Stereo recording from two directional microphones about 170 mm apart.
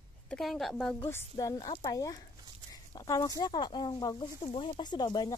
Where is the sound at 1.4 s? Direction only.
20° left (ahead or behind).